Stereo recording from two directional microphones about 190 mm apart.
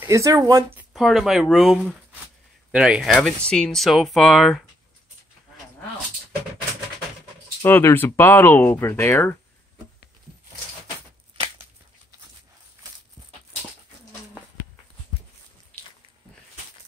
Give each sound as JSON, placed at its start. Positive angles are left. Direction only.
{"t": 0.0, "sound": "speech", "side_deg": -15}
{"t": 0.9, "sound": "speech", "side_deg": 0}
{"t": 7.6, "sound": "speech", "side_deg": 10}